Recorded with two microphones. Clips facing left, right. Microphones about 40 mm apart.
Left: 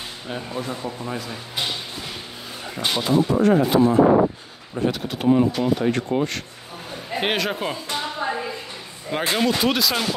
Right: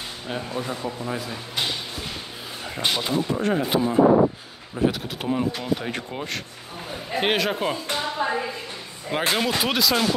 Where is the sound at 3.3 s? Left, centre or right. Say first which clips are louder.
Left 7 dB; left.